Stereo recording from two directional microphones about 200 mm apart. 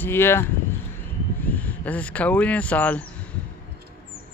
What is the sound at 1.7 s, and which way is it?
Speech, 5° left (ahead or behind).